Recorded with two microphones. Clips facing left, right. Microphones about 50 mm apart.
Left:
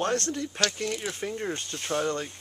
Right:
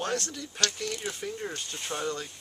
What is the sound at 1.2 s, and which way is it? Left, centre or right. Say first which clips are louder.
Speech: left 4 dB; left.